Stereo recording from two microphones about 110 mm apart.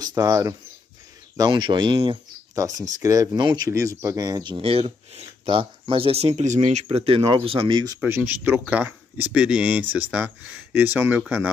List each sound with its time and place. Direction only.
0.0 s speech: 30° right (ahead or behind)
1.3 s speech: 40° right (ahead or behind)
2.5 s speech: 30° right (ahead or behind)
4.6 s speech: 65° right (ahead or behind)
7.2 s speech: 50° right (ahead or behind)
8.0 s speech: 15° right (ahead or behind)